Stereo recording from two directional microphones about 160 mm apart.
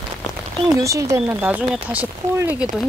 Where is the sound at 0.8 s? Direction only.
20° right (ahead or behind).